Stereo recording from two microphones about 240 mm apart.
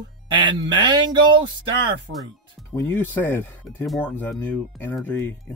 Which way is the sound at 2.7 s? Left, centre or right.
Centre.